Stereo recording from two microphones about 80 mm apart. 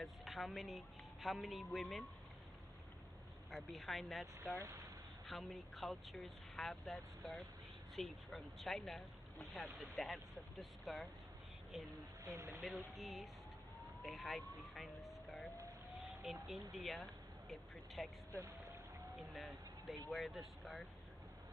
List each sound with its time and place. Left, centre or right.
0.0 s speech: centre
3.5 s speech: centre
4.6 s speech: right
5.2 s speech: centre
13.7 s emergency vehicle: centre
16.2 s speech: centre
19.1 s speech: centre